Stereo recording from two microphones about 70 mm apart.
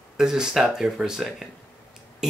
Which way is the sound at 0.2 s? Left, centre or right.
Centre.